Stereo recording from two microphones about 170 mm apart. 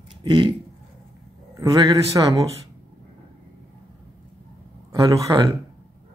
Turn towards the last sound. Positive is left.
turn(degrees=-20)  # may be behind; listen again after turning